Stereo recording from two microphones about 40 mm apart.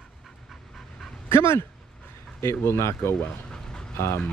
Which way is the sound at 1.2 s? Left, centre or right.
Left.